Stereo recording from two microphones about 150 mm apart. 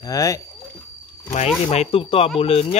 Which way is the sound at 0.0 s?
25° left (ahead or behind).